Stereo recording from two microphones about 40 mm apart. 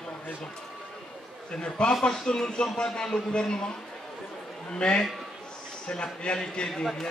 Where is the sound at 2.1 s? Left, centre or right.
Centre.